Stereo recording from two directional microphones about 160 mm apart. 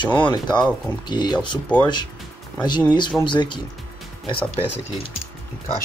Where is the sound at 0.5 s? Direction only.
5° left (ahead or behind).